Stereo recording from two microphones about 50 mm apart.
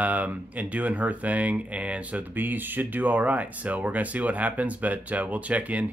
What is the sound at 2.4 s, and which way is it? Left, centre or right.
Speech, right.